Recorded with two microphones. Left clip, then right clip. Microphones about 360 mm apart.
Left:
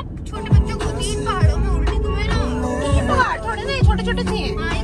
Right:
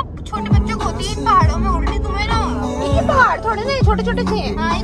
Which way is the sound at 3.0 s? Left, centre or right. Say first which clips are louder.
Right 6 dB; right.